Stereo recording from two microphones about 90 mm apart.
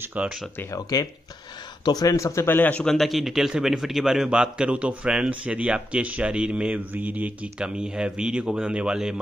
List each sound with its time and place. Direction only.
0.0 s a man's voice: 15° right (ahead or behind)
0.7 s speech: 40° left (ahead or behind); by 2.8 s 20° left (ahead or behind)
2.8 s a man's voice: 5° left (ahead or behind)